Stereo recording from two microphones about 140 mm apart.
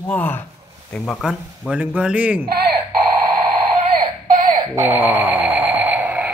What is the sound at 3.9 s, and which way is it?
Baby cry, 90° right.